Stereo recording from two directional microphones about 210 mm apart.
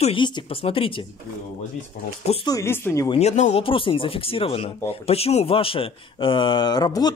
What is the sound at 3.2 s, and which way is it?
Speech, 35° left (ahead or behind).